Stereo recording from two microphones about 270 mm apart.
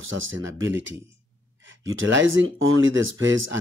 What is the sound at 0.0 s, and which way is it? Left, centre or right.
Speech, right.